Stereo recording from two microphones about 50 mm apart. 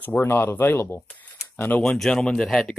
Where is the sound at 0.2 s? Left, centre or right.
Left.